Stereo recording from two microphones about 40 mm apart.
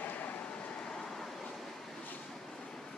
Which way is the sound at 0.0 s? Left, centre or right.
Left.